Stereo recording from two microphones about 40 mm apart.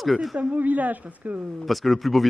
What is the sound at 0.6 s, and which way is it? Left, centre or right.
Speech, right.